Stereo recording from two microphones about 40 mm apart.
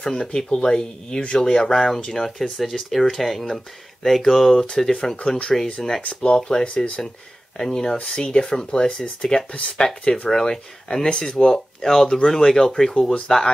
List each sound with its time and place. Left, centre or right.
0.0 s speech: left
6.0 s speech: left
7.5 s speech: centre; by 10.3 s left
10.3 s speech: centre
12.1 s speech: centre